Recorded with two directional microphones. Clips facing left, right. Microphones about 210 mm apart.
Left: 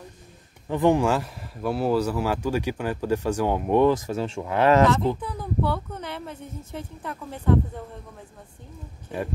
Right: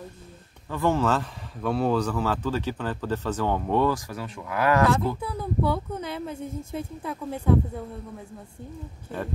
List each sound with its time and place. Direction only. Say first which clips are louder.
0.7 s speech: left 3 dB; 15° left (ahead or behind)
5.2 s speech: right 1 dB; 10° right (ahead or behind)